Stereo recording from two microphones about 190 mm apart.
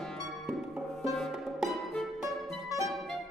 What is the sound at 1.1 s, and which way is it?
Music, centre (ahead or behind).